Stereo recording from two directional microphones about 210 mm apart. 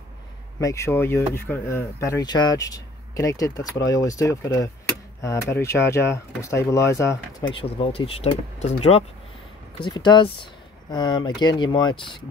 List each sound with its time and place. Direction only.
0.6 s speech: 15° left (ahead or behind)
7.5 s speech: 25° left (ahead or behind)
9.8 s speech: 20° left (ahead or behind)